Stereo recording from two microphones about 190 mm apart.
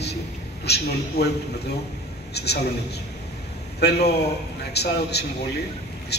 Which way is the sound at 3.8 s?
60° left (ahead or behind).